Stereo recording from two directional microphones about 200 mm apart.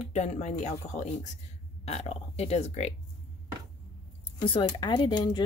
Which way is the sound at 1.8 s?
30° left (ahead or behind).